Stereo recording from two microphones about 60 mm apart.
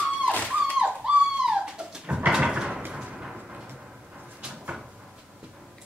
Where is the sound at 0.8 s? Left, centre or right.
Centre.